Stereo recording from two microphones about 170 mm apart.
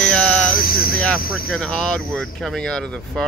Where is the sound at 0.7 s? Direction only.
60° left (ahead or behind).